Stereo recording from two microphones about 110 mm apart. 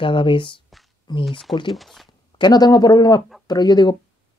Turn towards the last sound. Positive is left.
turn(degrees=40)  # may be behind; listen again after turning